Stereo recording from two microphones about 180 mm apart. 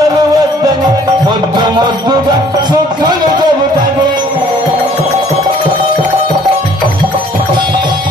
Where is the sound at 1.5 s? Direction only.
25° right (ahead or behind).